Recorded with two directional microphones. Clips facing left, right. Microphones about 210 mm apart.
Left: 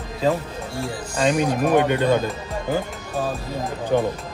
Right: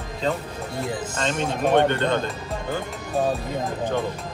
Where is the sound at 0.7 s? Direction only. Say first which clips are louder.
Right 1 dB; 20° right (ahead or behind).